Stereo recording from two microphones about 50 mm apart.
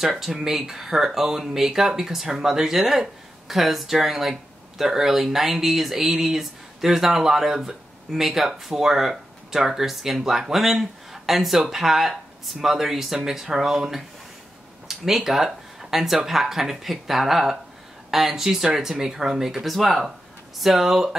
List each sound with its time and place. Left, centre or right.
0.0 s speech: centre